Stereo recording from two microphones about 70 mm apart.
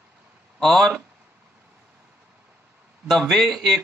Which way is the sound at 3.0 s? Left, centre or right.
Centre.